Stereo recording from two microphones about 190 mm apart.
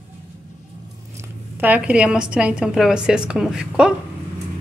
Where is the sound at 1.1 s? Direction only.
10° right (ahead or behind).